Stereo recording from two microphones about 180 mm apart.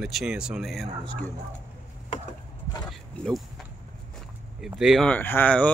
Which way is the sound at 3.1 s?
Centre (ahead or behind).